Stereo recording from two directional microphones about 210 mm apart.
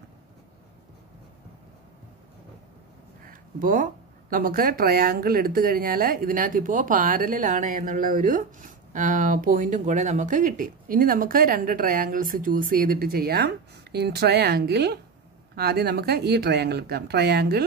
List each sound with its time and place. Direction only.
3.3 s speech: 40° right (ahead or behind)